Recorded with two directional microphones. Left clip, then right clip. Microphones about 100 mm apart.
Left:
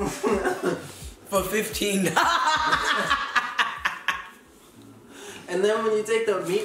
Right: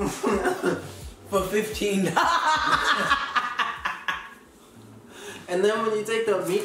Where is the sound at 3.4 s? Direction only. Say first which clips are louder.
Left 1 dB; 20° left (ahead or behind).